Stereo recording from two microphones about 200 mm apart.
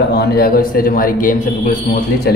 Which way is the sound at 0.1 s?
50° left (ahead or behind).